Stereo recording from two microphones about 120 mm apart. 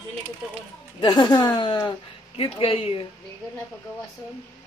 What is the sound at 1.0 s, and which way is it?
A woman's voice, 40° left (ahead or behind).